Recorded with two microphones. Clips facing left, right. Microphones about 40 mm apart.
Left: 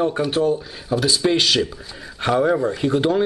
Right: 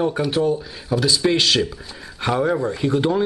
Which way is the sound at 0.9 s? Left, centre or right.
Left.